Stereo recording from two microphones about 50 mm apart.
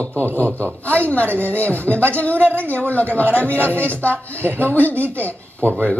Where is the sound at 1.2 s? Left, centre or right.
Right.